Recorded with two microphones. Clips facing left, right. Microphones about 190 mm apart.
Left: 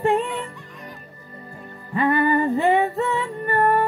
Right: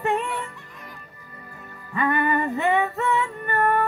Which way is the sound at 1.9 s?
30° left (ahead or behind).